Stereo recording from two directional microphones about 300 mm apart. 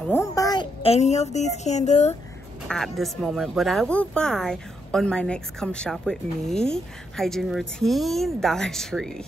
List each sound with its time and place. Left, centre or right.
0.0 s a woman's voice: centre
2.7 s speech: centre